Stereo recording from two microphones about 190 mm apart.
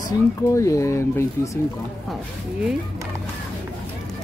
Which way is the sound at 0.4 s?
15° left (ahead or behind).